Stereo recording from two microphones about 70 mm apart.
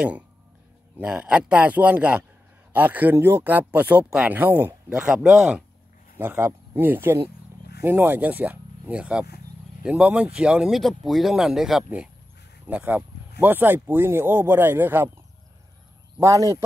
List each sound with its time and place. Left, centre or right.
0.9 s speech: centre
5.0 s speech: centre
6.1 s speech: right; by 10.7 s centre
10.7 s speech: centre
12.6 s speech: right
16.2 s speech: right